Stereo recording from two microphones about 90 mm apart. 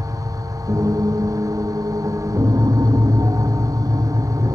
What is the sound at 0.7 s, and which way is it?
Gong, 40° right (ahead or behind).